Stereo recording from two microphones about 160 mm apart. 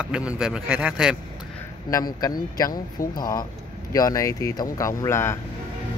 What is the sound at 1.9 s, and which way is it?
Speech, 20° left (ahead or behind).